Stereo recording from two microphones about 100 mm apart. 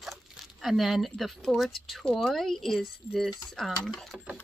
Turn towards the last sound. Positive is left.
turn(degrees=5)  # may be behind; listen again after turning